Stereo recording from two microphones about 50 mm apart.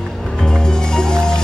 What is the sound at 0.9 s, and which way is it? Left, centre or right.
Music, centre.